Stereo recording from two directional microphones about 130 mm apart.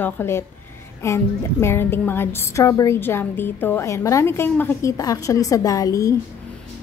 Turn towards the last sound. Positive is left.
turn(degrees=25)  # may be behind; listen again after turning